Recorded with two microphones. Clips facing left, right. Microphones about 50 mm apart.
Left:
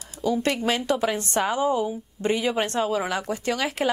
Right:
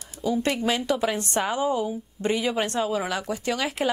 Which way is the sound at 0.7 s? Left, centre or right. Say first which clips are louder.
Left 1 dB; left.